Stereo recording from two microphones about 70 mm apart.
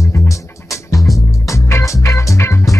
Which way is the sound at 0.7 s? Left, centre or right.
Left.